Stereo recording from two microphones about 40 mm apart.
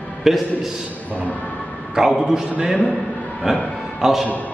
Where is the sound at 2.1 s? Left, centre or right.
Centre.